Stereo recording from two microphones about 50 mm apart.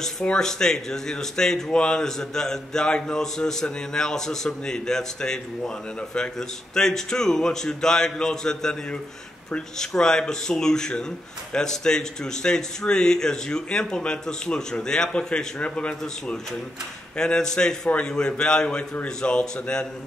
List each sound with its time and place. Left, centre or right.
0.2 s speech: centre
17.2 s speech: centre